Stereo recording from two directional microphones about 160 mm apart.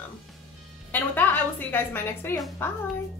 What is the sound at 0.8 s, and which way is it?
A woman's voice, 10° left (ahead or behind).